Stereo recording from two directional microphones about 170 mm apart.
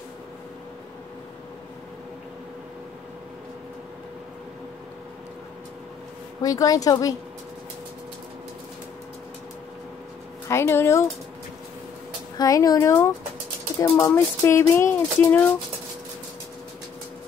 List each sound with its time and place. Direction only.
6.4 s a woman's voice: 20° left (ahead or behind)
10.5 s speech: 15° left (ahead or behind)
12.4 s a woman's voice: 20° left (ahead or behind)